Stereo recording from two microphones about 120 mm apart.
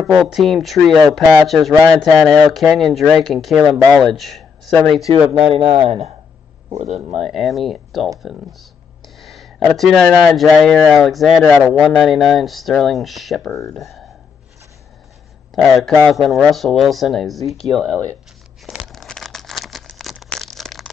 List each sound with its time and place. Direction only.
0.0 s speech: centre (ahead or behind)
5.5 s a man's voice: 45° right (ahead or behind); by 7.0 s 60° right (ahead or behind)
7.1 s speech: centre (ahead or behind)
9.0 s a sound: centre (ahead or behind)
9.8 s speech: centre (ahead or behind)
15.5 s speech: centre (ahead or behind)
18.7 s crumpling: 5° left (ahead or behind)
20.2 s a sound: 5° left (ahead or behind)